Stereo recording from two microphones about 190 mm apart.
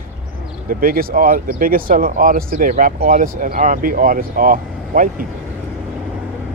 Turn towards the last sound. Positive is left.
turn(degrees=-45)  # may be behind; listen again after turning